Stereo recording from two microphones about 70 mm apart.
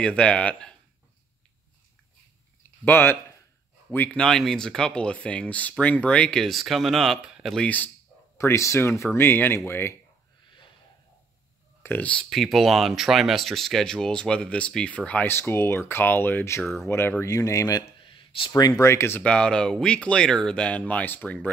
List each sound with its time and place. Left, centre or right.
0.0 s speech: centre
2.8 s speech: left
4.2 s speech: centre
7.2 s a sound: centre
7.6 s speech: left
8.4 s speech: left
12.0 s speech: centre
12.3 s speech: centre
15.2 s speech: left
17.2 s speech: left
18.8 s speech: left
19.2 s speech: centre